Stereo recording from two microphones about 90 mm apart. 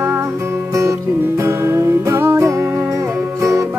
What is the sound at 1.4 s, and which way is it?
Music, 30° right (ahead or behind).